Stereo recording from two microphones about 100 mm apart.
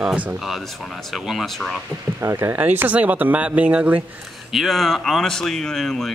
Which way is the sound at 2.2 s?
25° right (ahead or behind).